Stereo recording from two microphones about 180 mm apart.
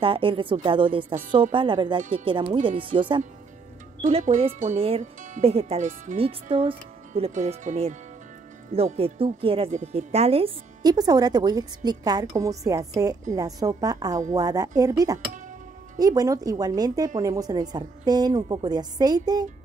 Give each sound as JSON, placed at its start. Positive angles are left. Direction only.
{"t": 0.0, "sound": "speech", "side_deg": -30}
{"t": 4.0, "sound": "speech", "side_deg": -40}